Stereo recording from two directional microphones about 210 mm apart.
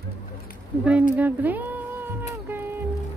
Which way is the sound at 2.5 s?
10° right (ahead or behind).